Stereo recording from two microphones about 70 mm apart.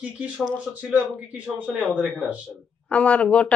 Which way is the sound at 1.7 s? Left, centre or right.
Centre.